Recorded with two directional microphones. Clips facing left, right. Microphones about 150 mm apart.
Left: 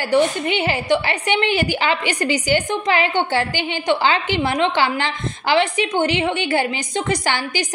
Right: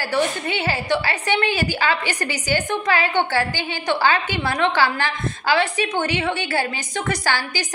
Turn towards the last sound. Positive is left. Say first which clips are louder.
# left 2 dB
turn(degrees=20)  # may be behind; listen again after turning